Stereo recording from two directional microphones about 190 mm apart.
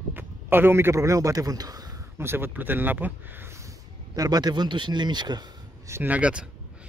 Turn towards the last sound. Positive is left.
turn(degrees=-5)  # may be behind; listen again after turning